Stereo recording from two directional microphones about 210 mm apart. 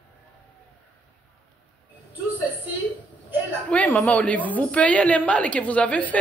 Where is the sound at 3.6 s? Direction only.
5° left (ahead or behind).